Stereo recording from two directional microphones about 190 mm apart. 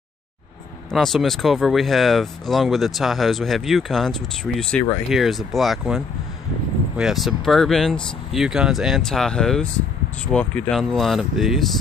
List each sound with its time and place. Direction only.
0.9 s speech: centre (ahead or behind)